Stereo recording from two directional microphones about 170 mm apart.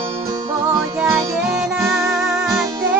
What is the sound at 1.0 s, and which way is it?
Music, 5° right (ahead or behind).